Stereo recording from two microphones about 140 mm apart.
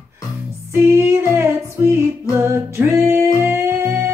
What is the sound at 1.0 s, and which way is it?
Music, 15° right (ahead or behind).